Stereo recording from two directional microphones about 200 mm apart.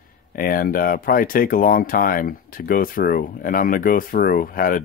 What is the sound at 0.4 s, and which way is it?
Speech, 45° left (ahead or behind).